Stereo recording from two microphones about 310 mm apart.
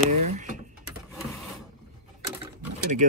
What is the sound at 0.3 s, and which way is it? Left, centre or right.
Mechanisms, right.